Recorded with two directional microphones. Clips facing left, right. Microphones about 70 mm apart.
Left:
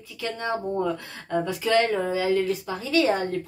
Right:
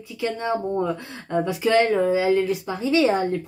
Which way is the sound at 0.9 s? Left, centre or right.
Centre.